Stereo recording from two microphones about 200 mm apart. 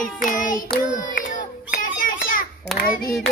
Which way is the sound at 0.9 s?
40° left (ahead or behind).